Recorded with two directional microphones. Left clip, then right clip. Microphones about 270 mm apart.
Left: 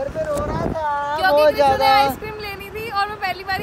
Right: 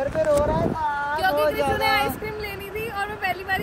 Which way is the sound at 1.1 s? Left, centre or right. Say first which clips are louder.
Left 8 dB; left.